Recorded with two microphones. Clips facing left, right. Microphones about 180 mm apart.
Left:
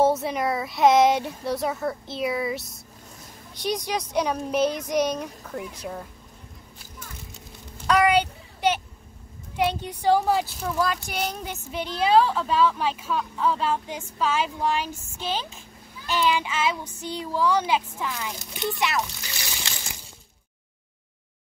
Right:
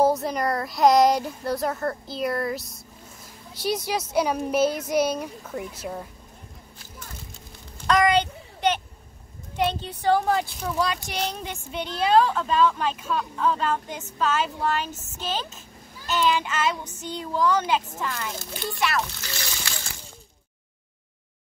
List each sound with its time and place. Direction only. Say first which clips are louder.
0.0 s speech: even; centre (ahead or behind)
7.8 s a sound: even; 10° left (ahead or behind)
9.6 s a woman's voice: left 1 dB; 10° left (ahead or behind)
18.6 s splash: left 1 dB; 20° left (ahead or behind)